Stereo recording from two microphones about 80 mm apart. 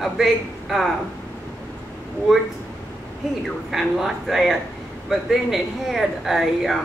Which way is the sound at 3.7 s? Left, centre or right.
Centre.